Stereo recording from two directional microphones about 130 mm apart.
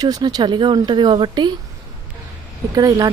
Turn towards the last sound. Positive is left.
turn(degrees=-30)  # may be behind; listen again after turning